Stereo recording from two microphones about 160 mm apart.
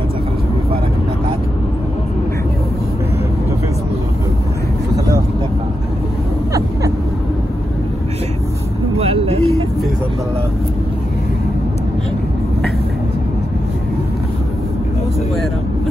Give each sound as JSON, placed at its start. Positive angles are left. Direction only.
{"t": 8.9, "sound": "vehicle", "side_deg": -40}